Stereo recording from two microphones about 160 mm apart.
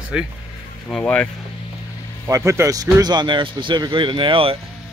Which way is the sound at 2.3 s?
20° right (ahead or behind).